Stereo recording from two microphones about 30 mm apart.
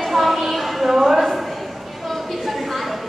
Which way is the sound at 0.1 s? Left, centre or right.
Centre.